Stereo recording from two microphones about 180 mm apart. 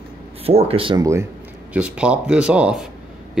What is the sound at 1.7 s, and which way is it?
Speech, 5° right (ahead or behind).